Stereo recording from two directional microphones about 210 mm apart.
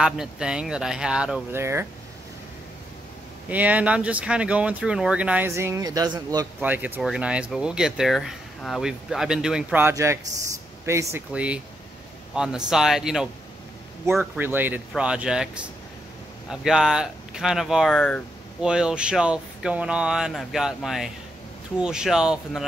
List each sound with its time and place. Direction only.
0.0 s speech: 5° right (ahead or behind)
3.4 s speech: 5° right (ahead or behind)